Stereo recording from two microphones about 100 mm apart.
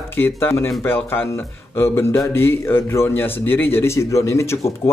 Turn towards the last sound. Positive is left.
turn(degrees=30)  # may be behind; listen again after turning